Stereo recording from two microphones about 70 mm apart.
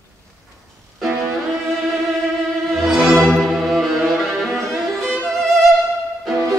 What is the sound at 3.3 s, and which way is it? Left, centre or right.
Music, centre.